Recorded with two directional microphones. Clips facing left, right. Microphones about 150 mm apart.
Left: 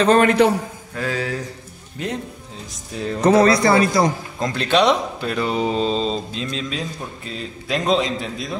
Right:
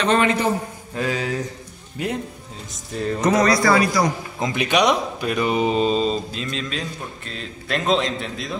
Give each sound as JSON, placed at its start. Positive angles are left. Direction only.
{"t": 0.0, "sound": "a man's voice", "side_deg": 35}
{"t": 0.9, "sound": "a sound", "side_deg": -20}
{"t": 2.0, "sound": "speech", "side_deg": -10}
{"t": 3.2, "sound": "speech", "side_deg": 30}
{"t": 4.4, "sound": "a man's voice", "side_deg": -15}